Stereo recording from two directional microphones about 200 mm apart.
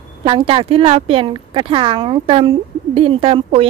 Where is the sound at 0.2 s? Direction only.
25° right (ahead or behind).